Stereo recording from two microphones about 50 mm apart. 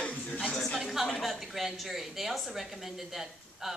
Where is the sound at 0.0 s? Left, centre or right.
Left.